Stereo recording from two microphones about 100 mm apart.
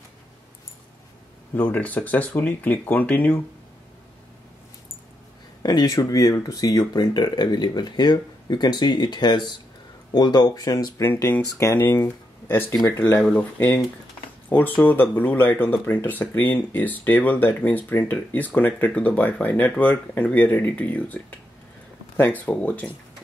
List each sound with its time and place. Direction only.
1.6 s speech: 15° left (ahead or behind)
5.6 s speech: 40° left (ahead or behind); by 22.8 s 15° left (ahead or behind)